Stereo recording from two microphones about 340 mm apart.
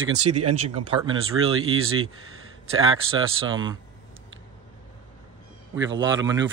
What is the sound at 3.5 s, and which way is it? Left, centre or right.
Speech, centre.